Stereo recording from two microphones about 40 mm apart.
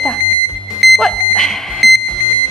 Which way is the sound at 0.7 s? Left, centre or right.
Centre.